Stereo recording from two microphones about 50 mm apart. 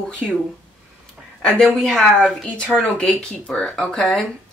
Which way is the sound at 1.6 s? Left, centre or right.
Centre.